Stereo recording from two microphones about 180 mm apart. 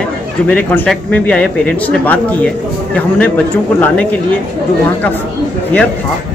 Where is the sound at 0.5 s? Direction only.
10° left (ahead or behind).